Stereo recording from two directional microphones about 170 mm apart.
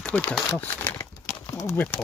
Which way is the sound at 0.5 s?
10° left (ahead or behind).